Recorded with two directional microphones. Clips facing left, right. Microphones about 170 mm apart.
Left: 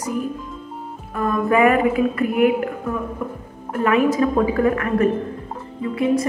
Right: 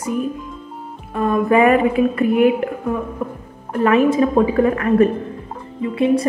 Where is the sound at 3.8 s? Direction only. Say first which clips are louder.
Right 3 dB; 30° right (ahead or behind).